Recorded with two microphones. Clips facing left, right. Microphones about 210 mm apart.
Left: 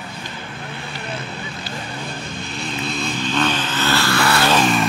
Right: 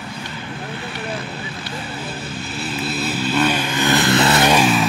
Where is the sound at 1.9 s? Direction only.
5° right (ahead or behind); by 4.5 s 20° right (ahead or behind).